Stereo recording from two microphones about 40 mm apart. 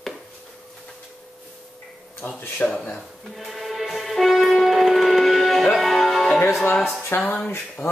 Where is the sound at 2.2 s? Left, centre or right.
Left.